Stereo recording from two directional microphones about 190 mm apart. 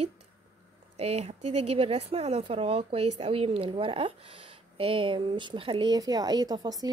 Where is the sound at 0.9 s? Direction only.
30° right (ahead or behind).